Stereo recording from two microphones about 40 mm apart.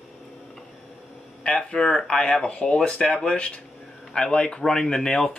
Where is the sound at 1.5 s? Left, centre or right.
Left.